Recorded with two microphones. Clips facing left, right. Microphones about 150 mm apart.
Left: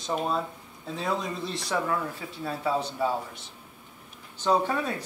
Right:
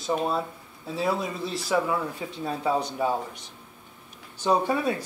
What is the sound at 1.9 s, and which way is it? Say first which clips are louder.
Speech: right 2 dB; 20° right (ahead or behind).